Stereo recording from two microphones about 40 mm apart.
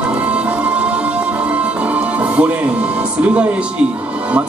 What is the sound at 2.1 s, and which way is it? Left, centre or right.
Music, right.